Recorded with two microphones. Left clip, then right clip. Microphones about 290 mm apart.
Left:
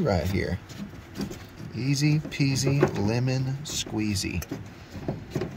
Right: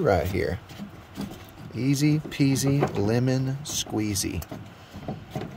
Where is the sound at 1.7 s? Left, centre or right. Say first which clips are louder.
Right 3 dB; right.